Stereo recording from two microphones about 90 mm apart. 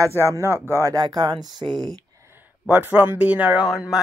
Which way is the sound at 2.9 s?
15° right (ahead or behind).